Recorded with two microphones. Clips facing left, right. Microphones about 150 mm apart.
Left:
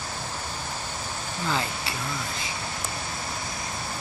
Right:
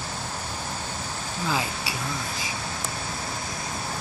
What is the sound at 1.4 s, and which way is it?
Speech, 10° right (ahead or behind).